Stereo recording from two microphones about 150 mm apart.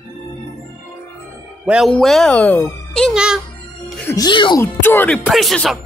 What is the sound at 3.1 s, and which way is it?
Speech, 5° right (ahead or behind).